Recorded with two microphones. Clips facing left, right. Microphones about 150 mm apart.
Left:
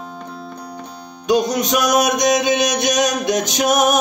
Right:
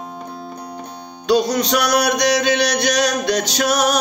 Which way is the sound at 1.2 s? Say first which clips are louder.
Even; 15° left (ahead or behind).